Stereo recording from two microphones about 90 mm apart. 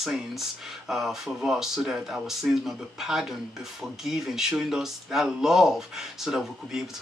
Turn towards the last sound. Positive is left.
turn(degrees=-5)  # may be behind; listen again after turning